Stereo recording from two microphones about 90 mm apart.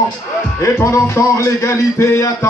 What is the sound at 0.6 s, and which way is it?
Music, 35° left (ahead or behind).